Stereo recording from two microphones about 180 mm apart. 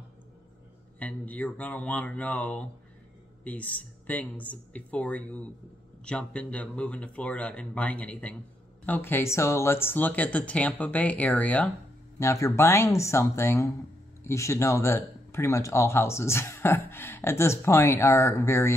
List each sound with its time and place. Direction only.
0.9 s speech: 10° left (ahead or behind)